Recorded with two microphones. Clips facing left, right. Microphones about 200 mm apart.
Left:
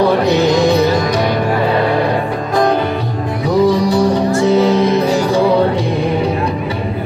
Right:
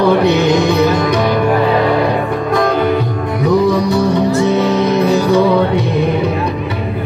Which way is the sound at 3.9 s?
30° left (ahead or behind).